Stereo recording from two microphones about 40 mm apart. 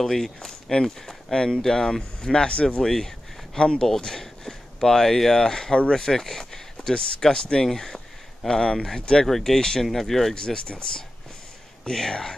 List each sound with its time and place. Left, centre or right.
0.0 s speech: centre; by 2.8 s left
2.8 s speech: centre
3.9 s speech: centre
10.3 s speech: centre